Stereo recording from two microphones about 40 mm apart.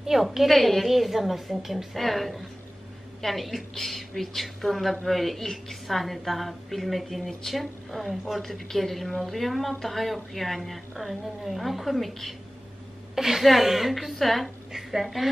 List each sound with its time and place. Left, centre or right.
0.0 s a woman's voice: centre
0.5 s speech: centre
13.1 s a woman's voice: centre
14.7 s a woman's voice: centre